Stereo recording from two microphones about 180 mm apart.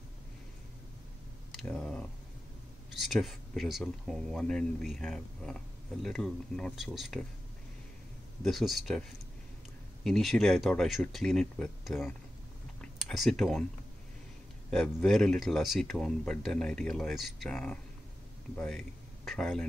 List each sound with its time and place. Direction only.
1.5 s a sound: centre (ahead or behind)
2.9 s speech: centre (ahead or behind)
8.5 s speech: centre (ahead or behind)
10.0 s speech: centre (ahead or behind)
14.7 s speech: centre (ahead or behind)